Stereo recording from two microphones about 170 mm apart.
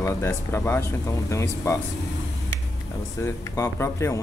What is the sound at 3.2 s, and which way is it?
Speech, 15° left (ahead or behind).